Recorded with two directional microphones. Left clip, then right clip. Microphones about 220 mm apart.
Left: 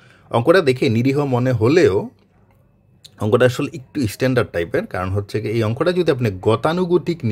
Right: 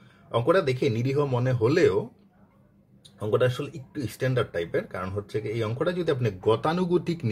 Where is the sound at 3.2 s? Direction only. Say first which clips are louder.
Left 9 dB; 45° left (ahead or behind).